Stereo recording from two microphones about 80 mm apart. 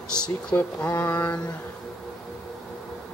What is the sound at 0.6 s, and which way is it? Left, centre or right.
Mantra, left.